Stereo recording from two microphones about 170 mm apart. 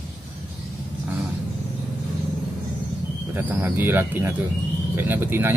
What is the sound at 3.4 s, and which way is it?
Speech, 15° right (ahead or behind).